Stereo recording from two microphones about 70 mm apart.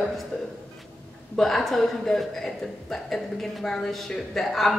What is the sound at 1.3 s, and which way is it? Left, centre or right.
Speech, centre.